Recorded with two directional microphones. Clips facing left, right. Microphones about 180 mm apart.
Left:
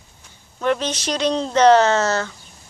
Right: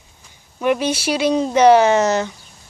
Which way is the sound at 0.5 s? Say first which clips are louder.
Right 3 dB; 10° right (ahead or behind).